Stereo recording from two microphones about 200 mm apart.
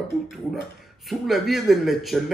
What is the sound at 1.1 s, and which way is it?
Speech, centre (ahead or behind).